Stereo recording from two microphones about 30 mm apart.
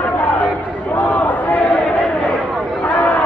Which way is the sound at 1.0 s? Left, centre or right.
Left.